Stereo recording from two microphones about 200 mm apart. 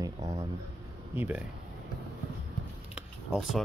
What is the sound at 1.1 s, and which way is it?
Speech, 10° right (ahead or behind).